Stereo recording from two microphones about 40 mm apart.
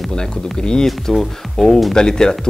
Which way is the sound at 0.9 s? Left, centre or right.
Centre.